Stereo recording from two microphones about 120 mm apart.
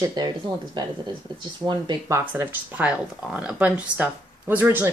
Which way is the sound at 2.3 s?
15° right (ahead or behind).